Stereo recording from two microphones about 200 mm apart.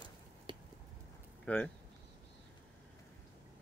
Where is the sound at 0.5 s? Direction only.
25° right (ahead or behind).